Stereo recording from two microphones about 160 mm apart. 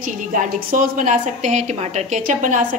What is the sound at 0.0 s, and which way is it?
A woman's voice, 55° right (ahead or behind).